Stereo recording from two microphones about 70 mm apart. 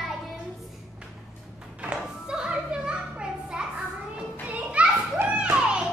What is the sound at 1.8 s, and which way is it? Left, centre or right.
Music, centre.